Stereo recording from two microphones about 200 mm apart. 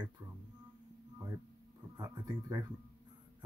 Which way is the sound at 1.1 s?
15° right (ahead or behind).